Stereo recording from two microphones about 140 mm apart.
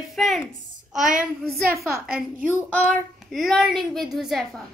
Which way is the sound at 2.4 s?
10° left (ahead or behind).